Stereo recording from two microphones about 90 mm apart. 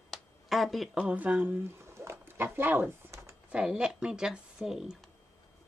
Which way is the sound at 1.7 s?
30° right (ahead or behind).